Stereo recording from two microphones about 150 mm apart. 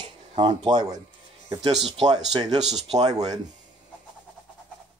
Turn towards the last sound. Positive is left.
turn(degrees=-25)  # may be behind; listen again after turning